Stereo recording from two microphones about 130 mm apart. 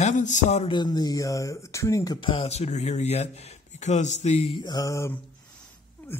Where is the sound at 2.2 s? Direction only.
45° left (ahead or behind).